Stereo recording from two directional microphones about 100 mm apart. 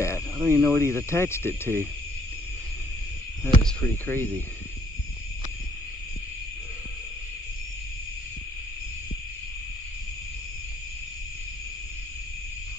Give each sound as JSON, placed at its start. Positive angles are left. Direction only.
{"t": 0.0, "sound": "cricket", "side_deg": 25}
{"t": 3.8, "sound": "speech", "side_deg": 20}